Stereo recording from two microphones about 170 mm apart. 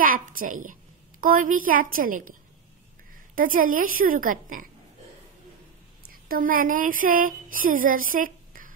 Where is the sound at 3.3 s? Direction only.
55° right (ahead or behind).